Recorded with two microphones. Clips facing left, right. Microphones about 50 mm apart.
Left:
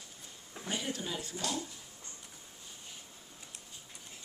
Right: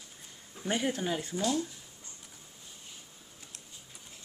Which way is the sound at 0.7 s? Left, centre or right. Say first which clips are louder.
Right 7 dB; right.